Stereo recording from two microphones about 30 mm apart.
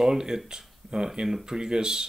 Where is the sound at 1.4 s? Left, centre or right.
Right.